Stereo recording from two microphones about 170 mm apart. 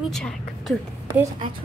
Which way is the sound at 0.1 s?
Centre (ahead or behind).